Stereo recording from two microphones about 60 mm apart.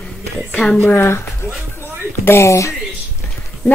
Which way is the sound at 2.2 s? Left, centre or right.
Left.